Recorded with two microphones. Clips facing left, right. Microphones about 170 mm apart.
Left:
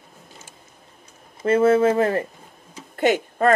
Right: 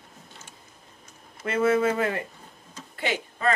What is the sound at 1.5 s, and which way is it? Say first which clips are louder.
Speech: left 6 dB; 40° left (ahead or behind).